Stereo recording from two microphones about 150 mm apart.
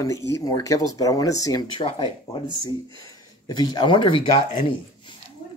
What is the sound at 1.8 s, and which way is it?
Speech, 35° left (ahead or behind).